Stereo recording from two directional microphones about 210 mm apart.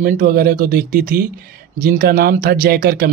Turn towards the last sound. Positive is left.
turn(degrees=-45)  # may be behind; listen again after turning